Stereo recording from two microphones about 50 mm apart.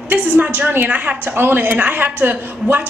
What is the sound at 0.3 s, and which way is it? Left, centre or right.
Speech, right.